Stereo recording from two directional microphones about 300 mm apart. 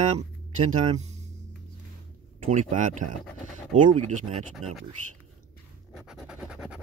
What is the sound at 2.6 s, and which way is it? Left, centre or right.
Speech, right.